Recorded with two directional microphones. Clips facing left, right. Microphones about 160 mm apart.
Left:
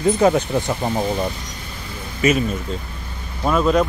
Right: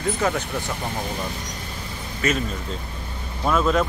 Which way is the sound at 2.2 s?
10° left (ahead or behind).